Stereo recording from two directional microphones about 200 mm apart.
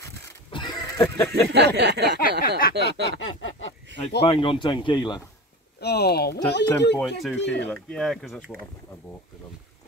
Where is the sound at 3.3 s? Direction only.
70° left (ahead or behind).